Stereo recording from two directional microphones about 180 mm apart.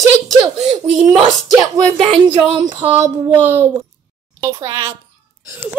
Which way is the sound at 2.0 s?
25° right (ahead or behind).